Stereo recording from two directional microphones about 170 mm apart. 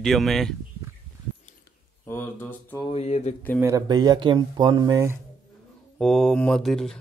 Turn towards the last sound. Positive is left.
turn(degrees=0)  # may be behind; listen again after turning